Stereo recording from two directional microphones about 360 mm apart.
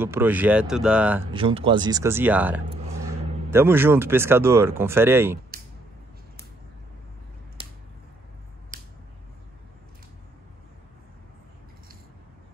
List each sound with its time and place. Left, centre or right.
0.0 s speech: centre
7.6 s finger snapping: centre
8.7 s a sound: right